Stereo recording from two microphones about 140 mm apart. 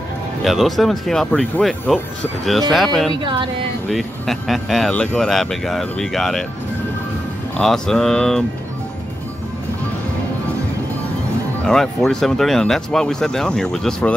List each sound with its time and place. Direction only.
0.4 s speech: centre (ahead or behind)
3.1 s speech: 35° right (ahead or behind)
3.9 s speech: centre (ahead or behind)
7.5 s speech: 5° left (ahead or behind)
11.6 s speech: 5° left (ahead or behind)